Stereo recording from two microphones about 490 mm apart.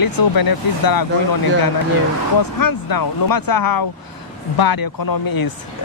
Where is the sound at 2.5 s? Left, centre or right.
Left.